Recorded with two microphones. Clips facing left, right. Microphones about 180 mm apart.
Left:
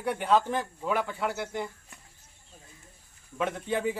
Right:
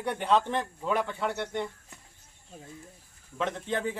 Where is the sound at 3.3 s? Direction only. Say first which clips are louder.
Left 1 dB; 10° left (ahead or behind).